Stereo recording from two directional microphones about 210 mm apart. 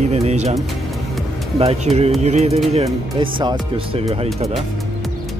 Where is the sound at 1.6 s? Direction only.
30° right (ahead or behind).